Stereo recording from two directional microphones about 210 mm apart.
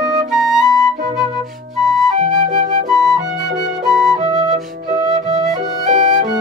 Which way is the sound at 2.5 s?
40° right (ahead or behind).